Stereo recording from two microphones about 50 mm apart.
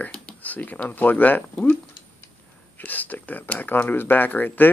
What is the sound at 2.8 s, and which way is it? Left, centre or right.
Speech, left.